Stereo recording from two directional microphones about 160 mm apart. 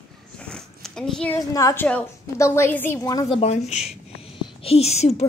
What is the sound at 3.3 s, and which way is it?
A woman's voice, 40° left (ahead or behind).